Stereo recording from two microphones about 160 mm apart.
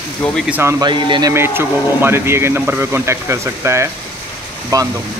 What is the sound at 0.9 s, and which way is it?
Speech, 30° right (ahead or behind).